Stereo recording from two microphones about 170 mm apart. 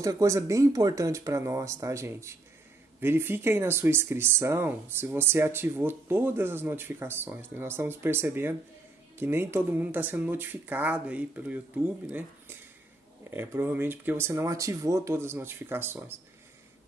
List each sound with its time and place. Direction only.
0.0 s speech: 20° right (ahead or behind)